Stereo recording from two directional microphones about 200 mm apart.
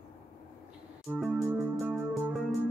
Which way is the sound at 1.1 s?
5° right (ahead or behind).